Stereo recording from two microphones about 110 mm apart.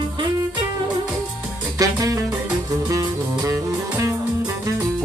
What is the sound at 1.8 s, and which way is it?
Music, 30° right (ahead or behind).